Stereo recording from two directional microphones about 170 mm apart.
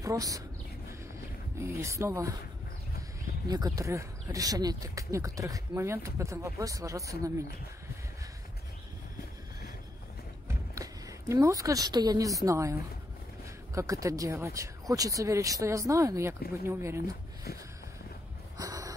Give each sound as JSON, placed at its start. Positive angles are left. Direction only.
{"t": 0.0, "sound": "speech", "side_deg": -20}
{"t": 1.6, "sound": "speech", "side_deg": -15}
{"t": 3.4, "sound": "speech", "side_deg": -20}
{"t": 10.7, "sound": "a woman's voice", "side_deg": -20}
{"t": 18.6, "sound": "a sound", "side_deg": -20}